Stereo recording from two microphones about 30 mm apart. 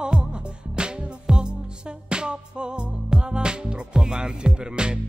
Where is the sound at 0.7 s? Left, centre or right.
Right.